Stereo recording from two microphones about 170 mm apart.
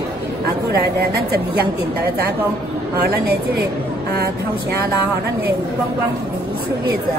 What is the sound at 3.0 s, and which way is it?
Speech, 70° right (ahead or behind).